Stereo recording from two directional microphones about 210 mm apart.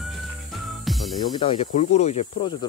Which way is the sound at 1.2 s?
20° left (ahead or behind).